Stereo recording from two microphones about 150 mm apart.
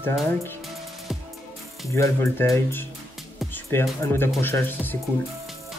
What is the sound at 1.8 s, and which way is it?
Speech, 20° left (ahead or behind).